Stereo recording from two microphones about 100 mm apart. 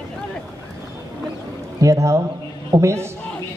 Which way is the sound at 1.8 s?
30° right (ahead or behind).